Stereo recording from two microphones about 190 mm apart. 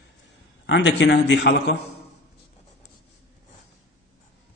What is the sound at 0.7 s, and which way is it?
A man's voice, 65° left (ahead or behind).